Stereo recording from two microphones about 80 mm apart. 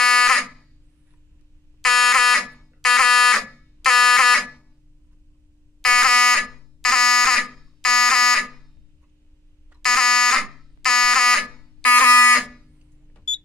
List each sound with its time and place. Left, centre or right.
0.0 s fire alarm: centre
1.8 s fire alarm: centre
5.8 s fire alarm: centre
9.8 s fire alarm: centre
11.8 s fire alarm: left
13.1 s a sound: centre